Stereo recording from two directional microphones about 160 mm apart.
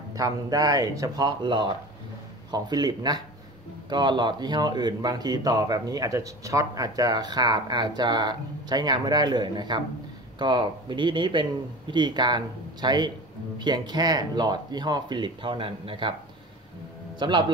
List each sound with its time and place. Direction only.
0.1 s speech: 20° right (ahead or behind)
17.2 s speech: 30° right (ahead or behind)